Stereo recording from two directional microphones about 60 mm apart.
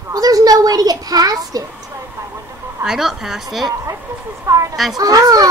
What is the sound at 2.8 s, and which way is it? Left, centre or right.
Speech, centre.